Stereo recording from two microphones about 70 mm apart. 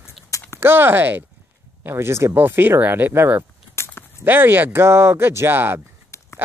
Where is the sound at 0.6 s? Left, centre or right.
Right.